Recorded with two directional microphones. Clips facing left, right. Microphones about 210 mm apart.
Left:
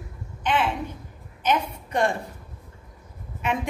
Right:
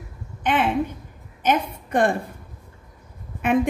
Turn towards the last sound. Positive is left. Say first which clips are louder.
# right 8 dB
turn(degrees=-55)  # may be behind; listen again after turning